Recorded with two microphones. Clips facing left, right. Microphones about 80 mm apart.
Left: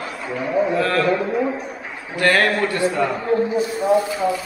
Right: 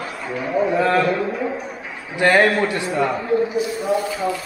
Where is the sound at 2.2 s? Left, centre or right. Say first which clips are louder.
Right 2 dB; centre.